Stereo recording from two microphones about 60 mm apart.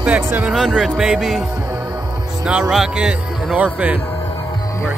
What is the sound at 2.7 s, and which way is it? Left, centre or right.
Speech, centre.